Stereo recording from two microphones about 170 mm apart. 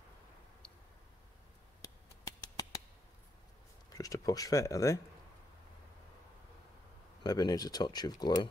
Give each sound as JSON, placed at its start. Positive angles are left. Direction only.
{"t": 1.8, "sound": "a sound", "side_deg": 20}
{"t": 3.9, "sound": "speech", "side_deg": 20}
{"t": 7.2, "sound": "speech", "side_deg": 20}